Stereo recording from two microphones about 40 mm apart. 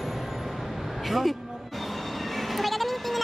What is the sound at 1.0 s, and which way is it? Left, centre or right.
Speech, centre.